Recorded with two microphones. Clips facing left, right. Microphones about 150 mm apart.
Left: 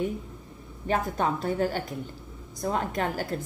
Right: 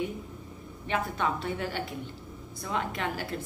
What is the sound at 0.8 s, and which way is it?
A woman's voice, 40° left (ahead or behind).